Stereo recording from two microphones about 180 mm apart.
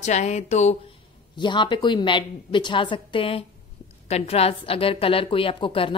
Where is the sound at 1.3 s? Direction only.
25° left (ahead or behind).